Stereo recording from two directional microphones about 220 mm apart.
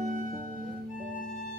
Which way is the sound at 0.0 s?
35° right (ahead or behind).